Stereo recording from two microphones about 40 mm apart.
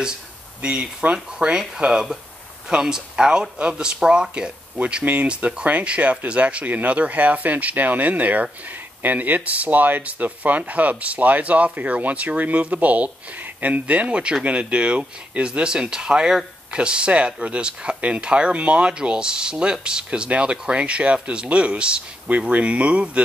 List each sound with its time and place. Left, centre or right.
0.6 s speech: right